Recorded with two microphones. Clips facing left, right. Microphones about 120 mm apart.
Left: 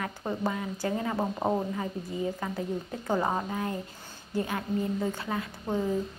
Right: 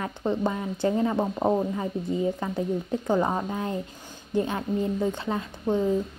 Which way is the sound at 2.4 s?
25° right (ahead or behind).